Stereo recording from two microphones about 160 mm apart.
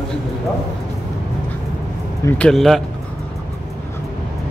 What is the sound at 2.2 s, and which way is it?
Speech, 5° left (ahead or behind).